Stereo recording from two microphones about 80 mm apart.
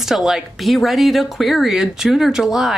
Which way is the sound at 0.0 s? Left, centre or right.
Centre.